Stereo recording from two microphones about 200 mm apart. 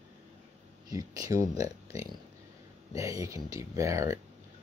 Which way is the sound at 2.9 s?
15° right (ahead or behind).